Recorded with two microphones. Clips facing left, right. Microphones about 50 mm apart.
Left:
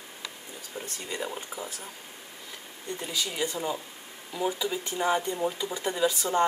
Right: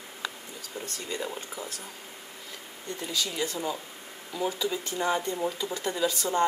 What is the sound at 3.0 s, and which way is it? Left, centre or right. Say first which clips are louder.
A woman's voice: even; centre.